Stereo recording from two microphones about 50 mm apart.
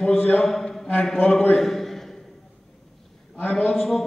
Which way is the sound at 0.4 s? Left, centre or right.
Centre.